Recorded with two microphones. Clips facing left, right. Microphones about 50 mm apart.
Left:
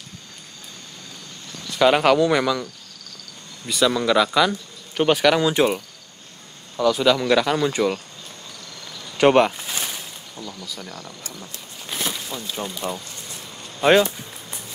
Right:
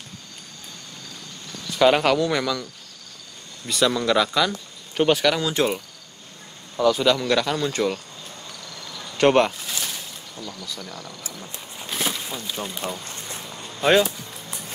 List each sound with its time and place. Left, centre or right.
1.7 s speech: centre
3.6 s speech: centre
6.8 s speech: centre
9.1 s speech: centre
9.6 s a sound: centre
11.4 s a sound: centre
12.4 s speech: centre
13.0 s a sound: right
13.7 s music: centre